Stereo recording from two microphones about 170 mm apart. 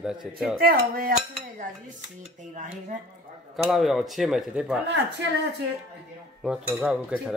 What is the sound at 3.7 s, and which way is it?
Speech, centre (ahead or behind).